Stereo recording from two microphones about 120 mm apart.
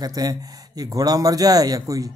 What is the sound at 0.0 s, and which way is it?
A man's voice, 30° right (ahead or behind).